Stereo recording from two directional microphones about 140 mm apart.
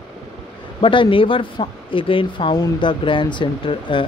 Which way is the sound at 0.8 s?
35° left (ahead or behind).